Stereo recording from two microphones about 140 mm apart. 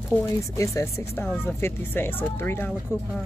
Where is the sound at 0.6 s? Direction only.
20° left (ahead or behind).